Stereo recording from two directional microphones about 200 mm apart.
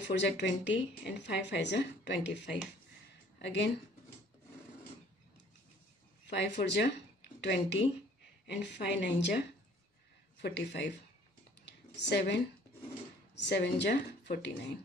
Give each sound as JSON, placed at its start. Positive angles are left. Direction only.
{"t": 0.1, "sound": "a woman's voice", "side_deg": 60}
{"t": 6.2, "sound": "a woman's voice", "side_deg": 60}
{"t": 11.6, "sound": "a sound", "side_deg": 60}
{"t": 13.3, "sound": "a woman's voice", "side_deg": 60}